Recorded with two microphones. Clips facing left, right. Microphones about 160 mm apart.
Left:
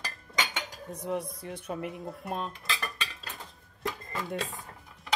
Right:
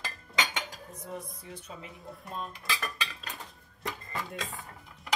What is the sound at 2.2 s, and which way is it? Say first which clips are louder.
Speech: left 4 dB; 75° left (ahead or behind).